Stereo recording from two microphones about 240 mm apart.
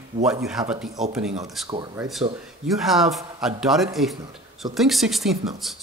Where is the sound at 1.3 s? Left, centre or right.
Centre.